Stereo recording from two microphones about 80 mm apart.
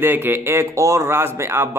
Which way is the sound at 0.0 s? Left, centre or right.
Right.